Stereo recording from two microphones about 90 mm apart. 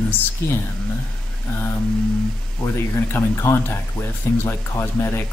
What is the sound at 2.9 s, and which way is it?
Speech, 30° left (ahead or behind).